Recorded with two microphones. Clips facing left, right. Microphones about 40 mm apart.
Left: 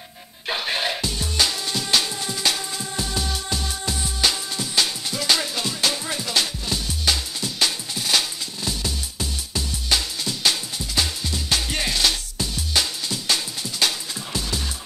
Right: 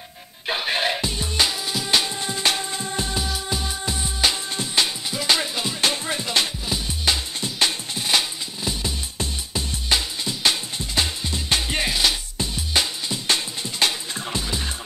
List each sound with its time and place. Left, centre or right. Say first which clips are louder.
0.5 s music: right 2 dB; centre
4.5 s music: right 1 dB; right
4.8 s music: even; centre